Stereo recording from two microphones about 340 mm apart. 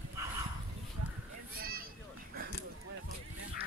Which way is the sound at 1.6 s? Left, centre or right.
Right.